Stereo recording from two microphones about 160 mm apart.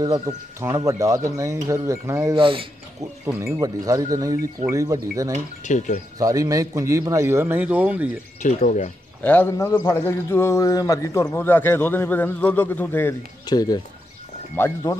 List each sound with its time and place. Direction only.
0.0 s speech: 20° right (ahead or behind)
2.3 s speech: 35° right (ahead or behind)
3.3 s speech: 15° right (ahead or behind)
5.6 s speech: 50° left (ahead or behind)
6.1 s a man's voice: 20° right (ahead or behind)
8.4 s speech: 50° left (ahead or behind)
9.2 s a man's voice: 10° left (ahead or behind)
13.5 s a man's voice: 25° left (ahead or behind)